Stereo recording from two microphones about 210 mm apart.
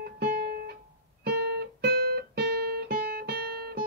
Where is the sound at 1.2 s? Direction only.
50° right (ahead or behind).